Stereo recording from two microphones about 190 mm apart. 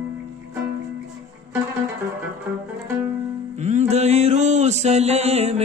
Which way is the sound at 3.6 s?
35° right (ahead or behind).